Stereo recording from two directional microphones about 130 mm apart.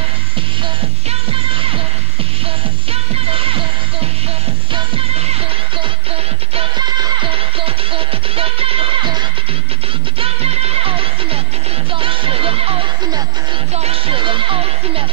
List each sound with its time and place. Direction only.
2.9 s music: 45° right (ahead or behind)
4.7 s music: 45° right (ahead or behind)
7.2 s music: 45° right (ahead or behind)
13.7 s music: 50° right (ahead or behind)